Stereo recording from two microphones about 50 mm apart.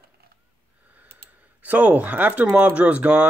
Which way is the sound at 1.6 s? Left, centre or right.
Right.